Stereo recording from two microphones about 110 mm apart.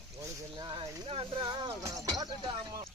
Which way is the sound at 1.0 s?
55° right (ahead or behind).